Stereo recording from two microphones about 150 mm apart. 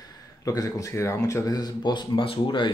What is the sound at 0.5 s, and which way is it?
Speech, 20° left (ahead or behind).